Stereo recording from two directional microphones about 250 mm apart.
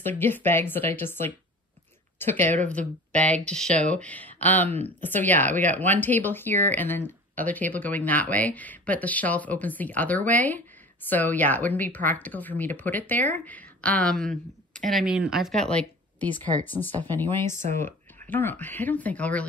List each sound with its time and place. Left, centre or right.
0.0 s speech: centre
17.6 s speech: right
17.8 s speech: centre